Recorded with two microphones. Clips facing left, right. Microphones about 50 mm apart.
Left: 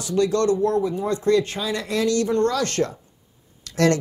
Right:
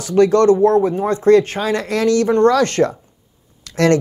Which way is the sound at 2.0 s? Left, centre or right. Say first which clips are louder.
Right 8 dB; right.